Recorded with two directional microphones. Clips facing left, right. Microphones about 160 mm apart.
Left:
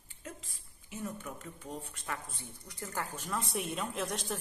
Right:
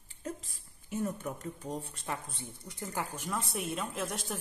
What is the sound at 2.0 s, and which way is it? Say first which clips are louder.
A woman's voice: right 1 dB; 25° right (ahead or behind).